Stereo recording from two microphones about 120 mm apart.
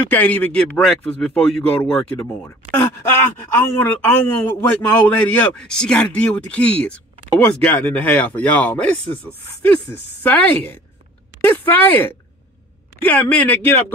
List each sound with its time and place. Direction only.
0.1 s speech: 15° left (ahead or behind)
2.7 s speech: 20° left (ahead or behind)